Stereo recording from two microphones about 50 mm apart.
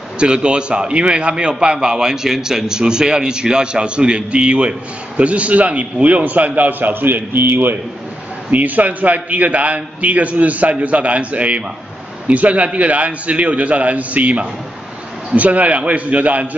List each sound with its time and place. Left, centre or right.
0.2 s a man's voice: right
8.5 s a man's voice: right